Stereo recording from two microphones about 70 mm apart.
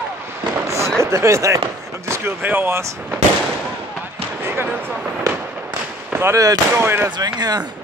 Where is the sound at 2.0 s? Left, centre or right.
Right.